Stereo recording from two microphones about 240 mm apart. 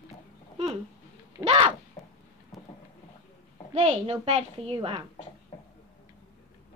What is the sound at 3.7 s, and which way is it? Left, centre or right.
A child's voice, right.